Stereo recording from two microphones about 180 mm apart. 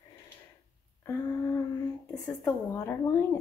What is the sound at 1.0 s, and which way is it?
Speech, 15° left (ahead or behind).